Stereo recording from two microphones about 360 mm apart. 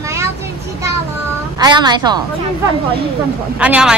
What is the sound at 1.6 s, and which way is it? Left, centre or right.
Speech, centre.